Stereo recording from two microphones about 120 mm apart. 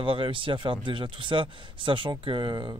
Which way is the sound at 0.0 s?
45° right (ahead or behind).